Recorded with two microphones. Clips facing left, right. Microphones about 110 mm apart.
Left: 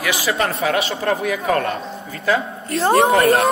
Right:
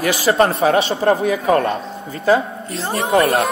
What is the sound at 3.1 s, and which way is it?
Speech, 30° right (ahead or behind).